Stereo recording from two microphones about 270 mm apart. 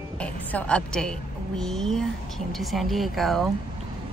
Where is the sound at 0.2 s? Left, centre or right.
Centre.